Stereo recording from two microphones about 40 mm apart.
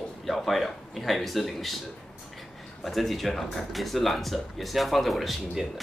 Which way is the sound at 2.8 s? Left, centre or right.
Centre.